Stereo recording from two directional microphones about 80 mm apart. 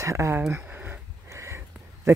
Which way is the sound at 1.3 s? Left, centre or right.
Right.